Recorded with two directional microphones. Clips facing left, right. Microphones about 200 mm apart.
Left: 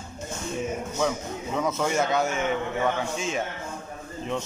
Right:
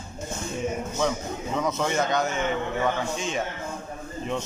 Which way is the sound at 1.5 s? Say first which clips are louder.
Left 1 dB; 5° left (ahead or behind).